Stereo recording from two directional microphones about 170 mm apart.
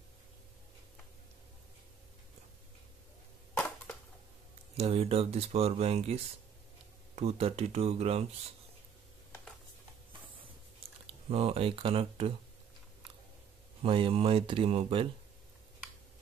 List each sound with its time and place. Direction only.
3.5 s crushing: 10° left (ahead or behind)
4.7 s speech: 35° right (ahead or behind)
11.2 s speech: 35° right (ahead or behind)
13.8 s speech: 30° right (ahead or behind)